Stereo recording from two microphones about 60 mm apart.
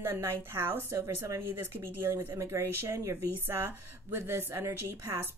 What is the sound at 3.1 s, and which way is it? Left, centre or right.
A woman's voice, right.